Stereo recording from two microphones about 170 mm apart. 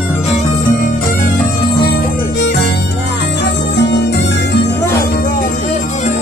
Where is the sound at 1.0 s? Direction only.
55° left (ahead or behind).